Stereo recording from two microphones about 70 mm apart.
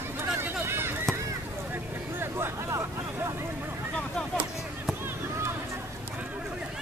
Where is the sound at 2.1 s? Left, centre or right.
Right.